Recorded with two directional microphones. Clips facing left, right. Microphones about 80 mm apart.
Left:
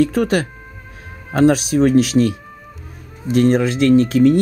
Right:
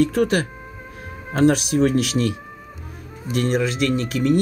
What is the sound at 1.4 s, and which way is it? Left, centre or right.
Speech, left.